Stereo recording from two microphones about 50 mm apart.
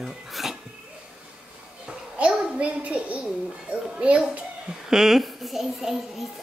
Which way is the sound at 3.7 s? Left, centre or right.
Centre.